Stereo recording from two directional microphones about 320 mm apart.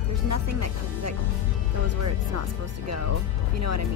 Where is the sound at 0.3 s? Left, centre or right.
Right.